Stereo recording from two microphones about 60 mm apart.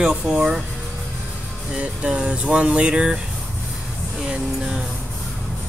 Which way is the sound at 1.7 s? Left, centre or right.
Centre.